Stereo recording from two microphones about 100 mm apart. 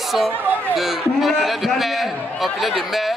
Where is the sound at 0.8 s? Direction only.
Centre (ahead or behind).